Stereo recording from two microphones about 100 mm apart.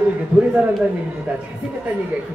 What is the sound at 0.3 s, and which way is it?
Speech, 10° right (ahead or behind).